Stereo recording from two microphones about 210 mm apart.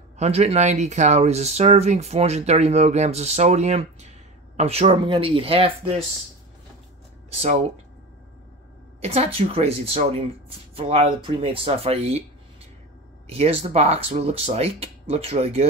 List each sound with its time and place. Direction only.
0.2 s speech: 30° right (ahead or behind)
7.3 s speech: 30° right (ahead or behind)
9.0 s speech: 30° right (ahead or behind)
13.4 s speech: 30° right (ahead or behind)